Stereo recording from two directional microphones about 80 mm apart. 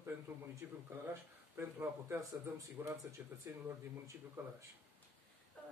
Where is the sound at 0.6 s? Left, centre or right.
Right.